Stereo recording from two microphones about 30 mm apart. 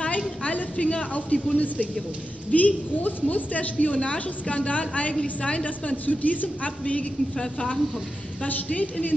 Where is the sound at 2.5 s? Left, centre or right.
Left.